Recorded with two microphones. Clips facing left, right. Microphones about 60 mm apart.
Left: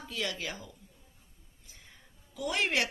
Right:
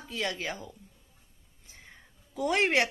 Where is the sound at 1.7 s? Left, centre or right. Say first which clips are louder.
Right 4 dB; right.